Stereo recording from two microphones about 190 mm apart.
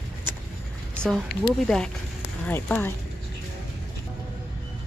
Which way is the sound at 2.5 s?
10° left (ahead or behind).